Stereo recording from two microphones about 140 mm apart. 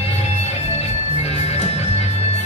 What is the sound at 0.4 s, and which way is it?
Music, 50° left (ahead or behind).